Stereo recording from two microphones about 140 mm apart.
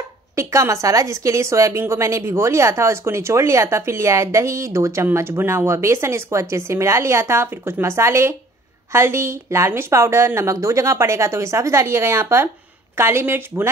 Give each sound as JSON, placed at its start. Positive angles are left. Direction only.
{"t": 0.4, "sound": "a woman's voice", "side_deg": -20}